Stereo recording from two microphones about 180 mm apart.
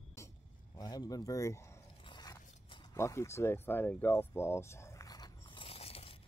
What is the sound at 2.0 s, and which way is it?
Zipper, 25° left (ahead or behind).